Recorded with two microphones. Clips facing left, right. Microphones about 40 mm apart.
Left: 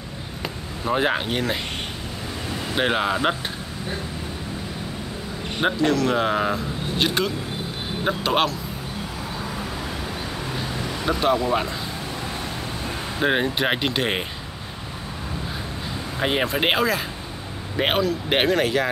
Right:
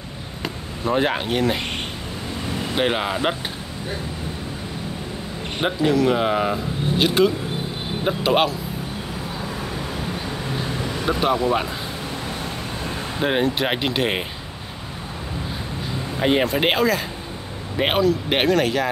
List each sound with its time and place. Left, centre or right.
0.4 s speech: centre
2.7 s speech: centre
5.6 s speech: centre
11.1 s speech: centre
13.2 s speech: centre
16.2 s speech: centre